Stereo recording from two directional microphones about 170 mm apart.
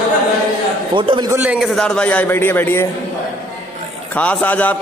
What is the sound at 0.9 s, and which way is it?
Speech, 30° right (ahead or behind).